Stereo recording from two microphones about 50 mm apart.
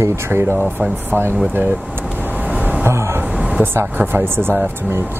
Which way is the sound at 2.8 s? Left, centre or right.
Right.